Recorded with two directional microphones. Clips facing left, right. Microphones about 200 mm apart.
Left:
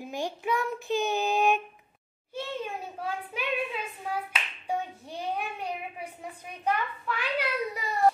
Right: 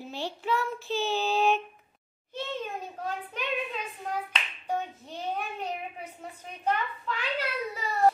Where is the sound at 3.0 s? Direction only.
10° left (ahead or behind).